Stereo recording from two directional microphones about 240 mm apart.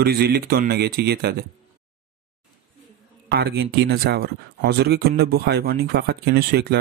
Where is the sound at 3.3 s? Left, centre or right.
Right.